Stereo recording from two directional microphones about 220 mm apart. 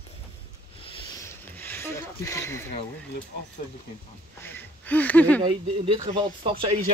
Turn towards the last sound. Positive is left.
turn(degrees=-20)  # may be behind; listen again after turning